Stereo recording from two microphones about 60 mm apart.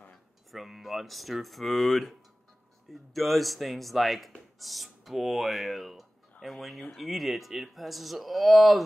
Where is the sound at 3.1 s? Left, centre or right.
Centre.